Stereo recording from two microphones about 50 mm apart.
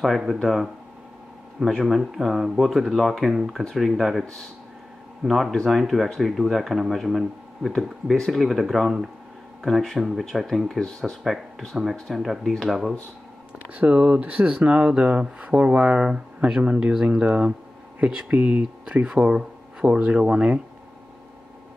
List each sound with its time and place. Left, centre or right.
0.0 s speech: centre
1.9 s speech: centre
5.2 s speech: centre
13.7 s speech: right
19.0 s speech: centre